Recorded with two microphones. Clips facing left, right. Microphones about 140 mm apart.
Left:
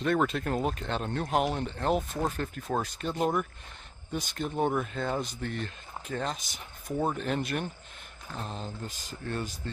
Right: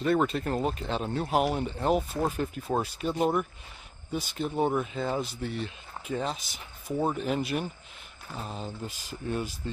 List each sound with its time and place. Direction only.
0.0 s speech: 5° right (ahead or behind)